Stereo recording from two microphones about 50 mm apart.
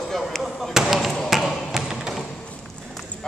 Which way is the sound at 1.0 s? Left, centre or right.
Centre.